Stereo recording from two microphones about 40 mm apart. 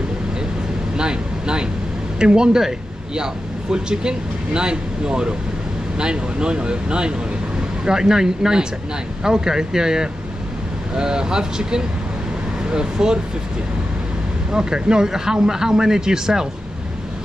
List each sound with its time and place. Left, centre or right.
0.9 s speech: right
3.7 s speech: right
14.5 s speech: centre